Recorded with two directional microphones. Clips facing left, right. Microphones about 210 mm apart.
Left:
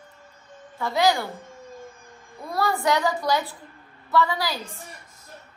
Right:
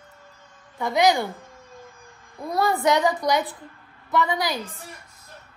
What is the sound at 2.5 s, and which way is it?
A woman's voice, 20° right (ahead or behind).